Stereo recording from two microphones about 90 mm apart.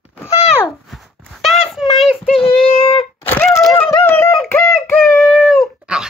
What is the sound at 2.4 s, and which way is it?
Child singing, 90° left.